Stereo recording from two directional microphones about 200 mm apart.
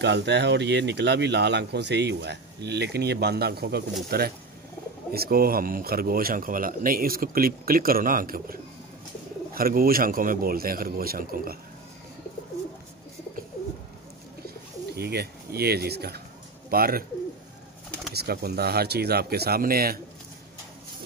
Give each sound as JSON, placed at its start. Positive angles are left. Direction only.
{"t": 0.0, "sound": "a man's voice", "side_deg": -60}
{"t": 15.0, "sound": "a man's voice", "side_deg": -55}
{"t": 18.1, "sound": "a man's voice", "side_deg": -50}